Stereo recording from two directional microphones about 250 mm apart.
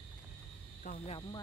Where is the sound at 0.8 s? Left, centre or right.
Left.